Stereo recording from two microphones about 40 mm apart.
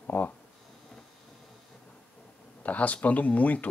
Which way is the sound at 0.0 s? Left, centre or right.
Left.